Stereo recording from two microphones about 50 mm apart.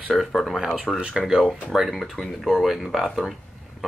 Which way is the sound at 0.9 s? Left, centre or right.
Centre.